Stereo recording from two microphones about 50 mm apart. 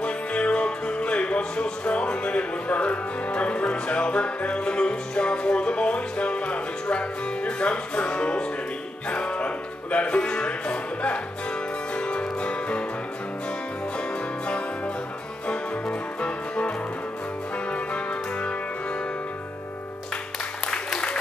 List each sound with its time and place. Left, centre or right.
0.0 s music: left
15.4 s music: left
20.6 s applause: centre